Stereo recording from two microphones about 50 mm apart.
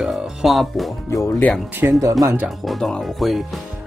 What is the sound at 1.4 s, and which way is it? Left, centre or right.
Speech, left.